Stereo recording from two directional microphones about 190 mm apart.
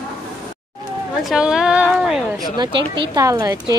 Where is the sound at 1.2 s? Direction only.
5° right (ahead or behind).